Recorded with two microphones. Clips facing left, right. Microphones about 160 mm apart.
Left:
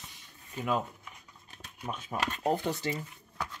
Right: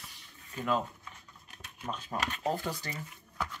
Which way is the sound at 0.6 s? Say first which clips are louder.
Even; 10° left (ahead or behind).